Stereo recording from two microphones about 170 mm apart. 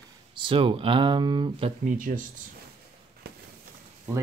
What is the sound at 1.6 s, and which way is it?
Speech, 50° right (ahead or behind).